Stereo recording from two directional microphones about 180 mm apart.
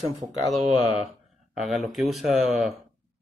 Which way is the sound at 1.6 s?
Centre (ahead or behind).